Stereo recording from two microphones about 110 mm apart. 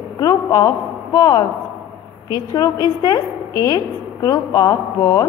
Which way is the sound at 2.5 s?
35° left (ahead or behind).